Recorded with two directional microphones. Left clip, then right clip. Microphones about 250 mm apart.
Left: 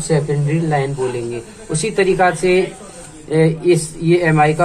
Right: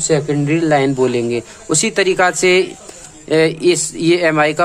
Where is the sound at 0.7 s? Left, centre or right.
Right.